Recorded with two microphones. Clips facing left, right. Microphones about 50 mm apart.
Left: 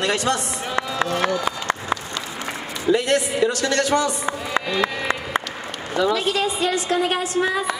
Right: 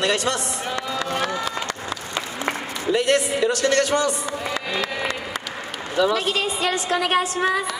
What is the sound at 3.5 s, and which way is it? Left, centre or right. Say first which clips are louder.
Speech: right 2 dB; right.